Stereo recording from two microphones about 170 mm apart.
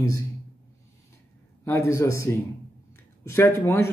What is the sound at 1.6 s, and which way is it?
Speech, 15° left (ahead or behind).